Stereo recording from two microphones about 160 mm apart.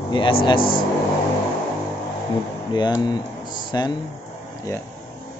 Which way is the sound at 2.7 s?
25° left (ahead or behind).